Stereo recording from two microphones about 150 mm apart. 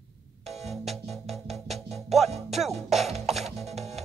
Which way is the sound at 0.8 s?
Centre (ahead or behind).